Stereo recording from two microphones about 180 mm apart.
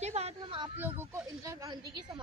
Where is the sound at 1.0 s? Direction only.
15° right (ahead or behind).